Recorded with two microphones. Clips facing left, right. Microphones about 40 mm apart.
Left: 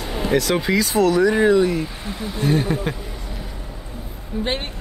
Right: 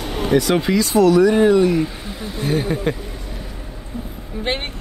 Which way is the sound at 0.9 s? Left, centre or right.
Left.